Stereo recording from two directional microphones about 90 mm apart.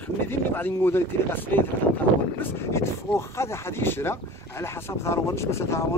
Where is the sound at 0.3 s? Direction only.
20° left (ahead or behind).